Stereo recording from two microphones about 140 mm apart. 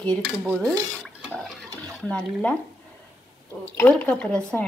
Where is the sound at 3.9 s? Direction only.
10° left (ahead or behind).